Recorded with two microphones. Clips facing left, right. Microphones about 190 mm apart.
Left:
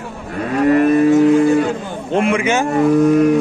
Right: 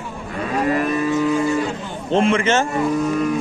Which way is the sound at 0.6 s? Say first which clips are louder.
Left 10 dB; 55° left (ahead or behind).